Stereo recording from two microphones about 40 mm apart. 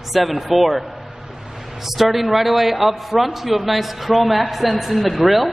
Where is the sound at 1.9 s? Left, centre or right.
Centre.